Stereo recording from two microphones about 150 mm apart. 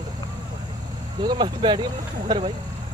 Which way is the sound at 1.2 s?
30° right (ahead or behind).